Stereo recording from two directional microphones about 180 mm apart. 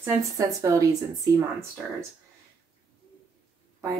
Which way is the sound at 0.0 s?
20° right (ahead or behind).